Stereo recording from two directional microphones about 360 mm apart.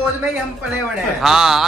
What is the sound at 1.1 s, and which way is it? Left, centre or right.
Speech, centre.